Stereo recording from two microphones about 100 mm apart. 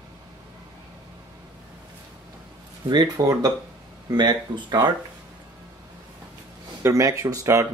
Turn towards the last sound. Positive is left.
turn(degrees=-30)  # may be behind; listen again after turning